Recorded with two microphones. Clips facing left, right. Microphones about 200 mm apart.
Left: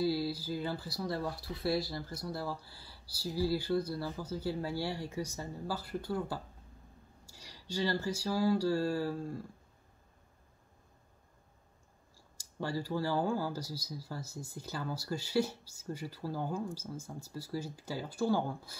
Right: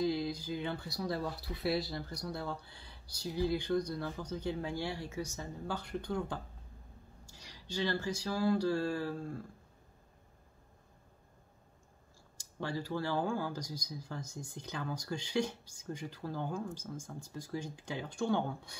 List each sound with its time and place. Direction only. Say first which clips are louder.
0.0 s speech: left 1 dB; 5° left (ahead or behind)
12.5 s speech: left 2 dB; 10° left (ahead or behind)